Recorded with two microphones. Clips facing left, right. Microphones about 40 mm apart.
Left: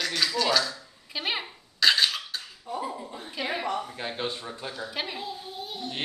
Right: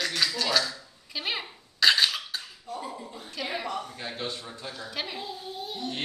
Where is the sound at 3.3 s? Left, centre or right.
Centre.